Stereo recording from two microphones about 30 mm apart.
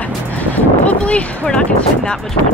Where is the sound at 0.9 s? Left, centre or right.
Left.